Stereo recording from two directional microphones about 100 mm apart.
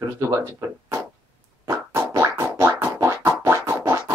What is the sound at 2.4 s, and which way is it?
Scratch, 25° right (ahead or behind).